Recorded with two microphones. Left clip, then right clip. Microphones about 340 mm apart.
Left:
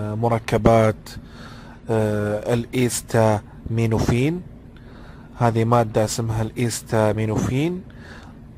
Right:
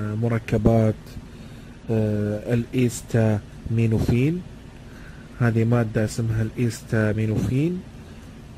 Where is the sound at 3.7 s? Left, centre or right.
Left.